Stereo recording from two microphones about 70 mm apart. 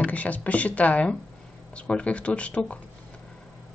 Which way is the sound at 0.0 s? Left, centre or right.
Left.